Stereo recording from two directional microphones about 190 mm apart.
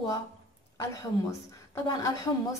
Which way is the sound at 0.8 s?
15° left (ahead or behind).